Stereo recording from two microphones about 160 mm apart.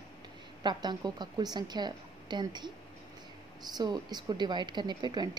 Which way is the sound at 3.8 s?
25° right (ahead or behind).